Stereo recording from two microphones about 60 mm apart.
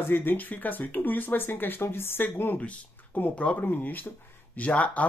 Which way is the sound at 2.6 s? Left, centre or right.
Left.